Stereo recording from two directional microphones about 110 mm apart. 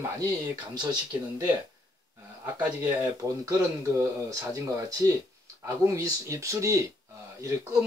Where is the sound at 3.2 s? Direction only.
30° right (ahead or behind).